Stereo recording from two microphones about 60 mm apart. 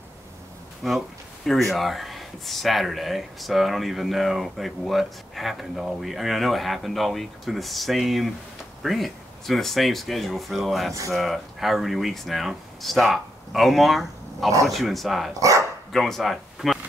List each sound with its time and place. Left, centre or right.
0.8 s speech: centre
15.3 s speech: right
15.9 s speech: centre